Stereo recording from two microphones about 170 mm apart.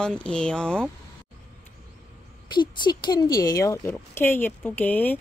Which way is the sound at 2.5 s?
25° left (ahead or behind).